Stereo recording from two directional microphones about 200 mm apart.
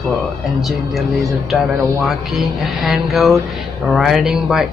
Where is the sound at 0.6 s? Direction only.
Centre (ahead or behind).